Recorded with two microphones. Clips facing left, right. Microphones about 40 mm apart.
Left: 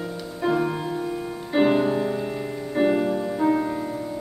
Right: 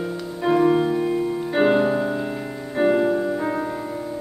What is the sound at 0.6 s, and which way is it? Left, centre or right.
Music, right.